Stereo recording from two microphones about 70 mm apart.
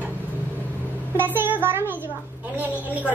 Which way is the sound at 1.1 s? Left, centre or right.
Right.